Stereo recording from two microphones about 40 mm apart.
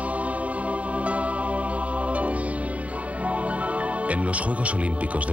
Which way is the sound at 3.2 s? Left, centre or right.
Right.